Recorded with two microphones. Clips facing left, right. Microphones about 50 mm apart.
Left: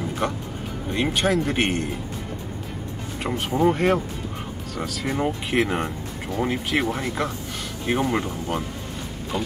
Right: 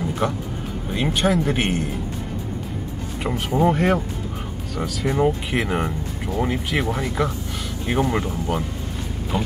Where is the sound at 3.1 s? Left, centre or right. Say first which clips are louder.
Right 2 dB; centre.